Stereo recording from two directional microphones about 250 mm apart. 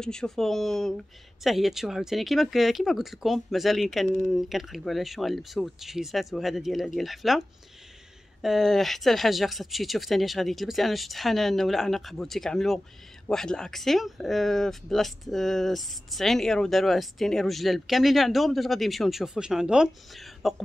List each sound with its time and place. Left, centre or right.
0.0 s speech: centre